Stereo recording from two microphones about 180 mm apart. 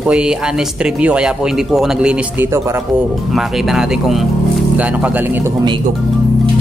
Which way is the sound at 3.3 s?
Centre (ahead or behind).